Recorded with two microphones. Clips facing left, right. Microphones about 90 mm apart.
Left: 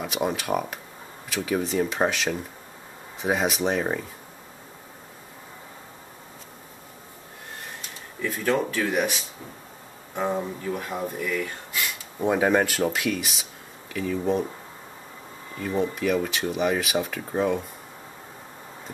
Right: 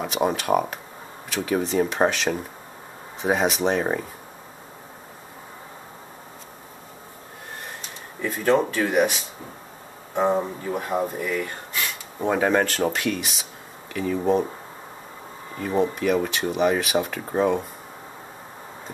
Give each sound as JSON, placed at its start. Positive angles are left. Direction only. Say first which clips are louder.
{"t": 0.0, "sound": "speech", "louder": "right 3 dB", "side_deg": 0}
{"t": 8.2, "sound": "speech", "louder": "right 4 dB", "side_deg": -25}
{"t": 10.1, "sound": "speech", "louder": "right 5 dB", "side_deg": -20}
{"t": 12.3, "sound": "speech", "louder": "even", "side_deg": 5}
{"t": 15.8, "sound": "speech", "louder": "right 3 dB", "side_deg": 0}